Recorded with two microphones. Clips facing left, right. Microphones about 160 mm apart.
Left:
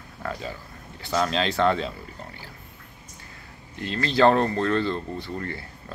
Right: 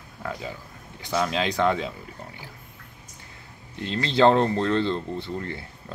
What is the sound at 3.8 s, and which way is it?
Speech, 20° right (ahead or behind).